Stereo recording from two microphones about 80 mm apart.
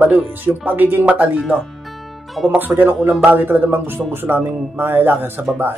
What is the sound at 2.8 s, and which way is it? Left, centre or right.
Speech, right.